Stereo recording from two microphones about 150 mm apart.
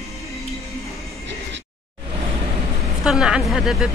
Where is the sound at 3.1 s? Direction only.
5° right (ahead or behind).